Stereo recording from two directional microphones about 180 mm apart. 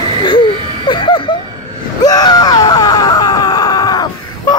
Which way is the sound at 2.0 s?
20° left (ahead or behind).